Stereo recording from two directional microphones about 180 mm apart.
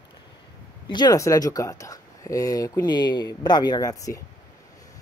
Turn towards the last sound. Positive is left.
turn(degrees=20)  # may be behind; listen again after turning